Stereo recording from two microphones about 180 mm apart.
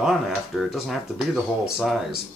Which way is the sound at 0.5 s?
Centre (ahead or behind).